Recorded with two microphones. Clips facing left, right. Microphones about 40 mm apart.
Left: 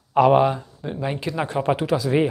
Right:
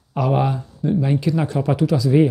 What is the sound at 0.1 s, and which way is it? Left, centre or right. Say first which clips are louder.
Speech: left 6 dB; left.